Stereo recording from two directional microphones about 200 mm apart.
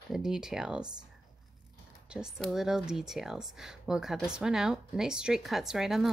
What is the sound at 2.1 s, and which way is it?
Speech, 5° right (ahead or behind).